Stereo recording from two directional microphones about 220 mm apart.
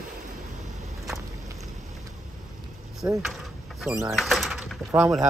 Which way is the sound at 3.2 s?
Centre (ahead or behind).